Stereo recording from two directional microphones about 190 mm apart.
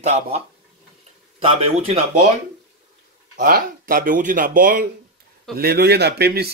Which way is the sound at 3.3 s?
45° right (ahead or behind).